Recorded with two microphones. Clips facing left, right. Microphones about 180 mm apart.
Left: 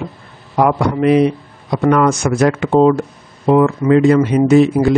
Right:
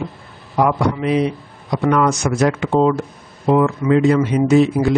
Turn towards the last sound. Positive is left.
turn(degrees=55)  # may be behind; listen again after turning